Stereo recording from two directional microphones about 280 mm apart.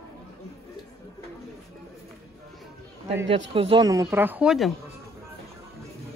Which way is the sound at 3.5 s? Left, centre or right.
Centre.